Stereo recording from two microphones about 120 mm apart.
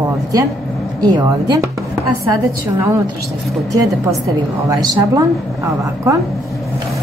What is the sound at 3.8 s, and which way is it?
A woman's voice, 30° right (ahead or behind).